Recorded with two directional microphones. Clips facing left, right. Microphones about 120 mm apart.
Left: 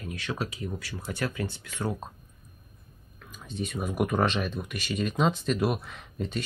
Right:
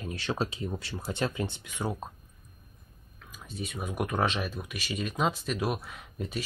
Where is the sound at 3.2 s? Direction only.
Centre (ahead or behind).